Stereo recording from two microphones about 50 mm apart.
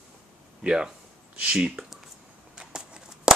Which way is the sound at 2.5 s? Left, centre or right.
Centre.